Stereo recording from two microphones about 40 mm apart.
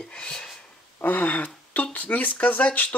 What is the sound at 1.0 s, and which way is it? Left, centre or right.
Speech, left.